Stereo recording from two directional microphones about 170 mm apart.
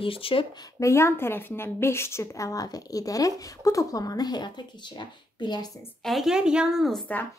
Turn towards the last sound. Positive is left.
turn(degrees=0)  # may be behind; listen again after turning